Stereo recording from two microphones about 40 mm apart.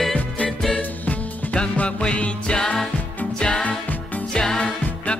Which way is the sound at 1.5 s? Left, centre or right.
Left.